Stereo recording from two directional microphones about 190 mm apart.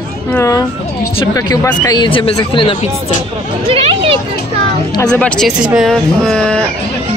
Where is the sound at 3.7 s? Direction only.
30° right (ahead or behind).